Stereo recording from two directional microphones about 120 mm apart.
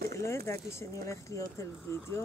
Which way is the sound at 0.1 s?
25° left (ahead or behind).